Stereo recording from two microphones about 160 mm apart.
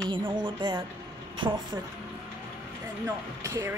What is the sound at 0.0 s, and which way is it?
Speech, 30° right (ahead or behind).